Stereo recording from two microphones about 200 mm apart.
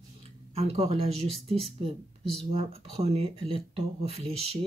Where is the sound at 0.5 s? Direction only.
30° right (ahead or behind).